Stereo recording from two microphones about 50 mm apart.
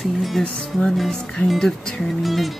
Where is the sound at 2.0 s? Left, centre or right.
Centre.